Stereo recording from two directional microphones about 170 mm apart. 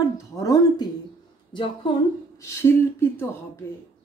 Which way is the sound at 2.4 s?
15° left (ahead or behind).